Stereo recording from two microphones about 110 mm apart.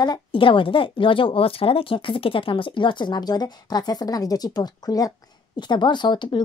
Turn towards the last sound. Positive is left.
turn(degrees=45)  # may be behind; listen again after turning